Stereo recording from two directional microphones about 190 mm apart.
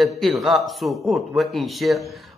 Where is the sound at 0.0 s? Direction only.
Centre (ahead or behind).